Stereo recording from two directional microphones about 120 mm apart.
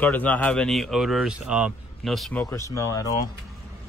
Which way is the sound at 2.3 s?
25° left (ahead or behind).